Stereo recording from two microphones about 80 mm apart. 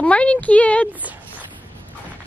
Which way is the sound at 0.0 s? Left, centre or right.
Centre.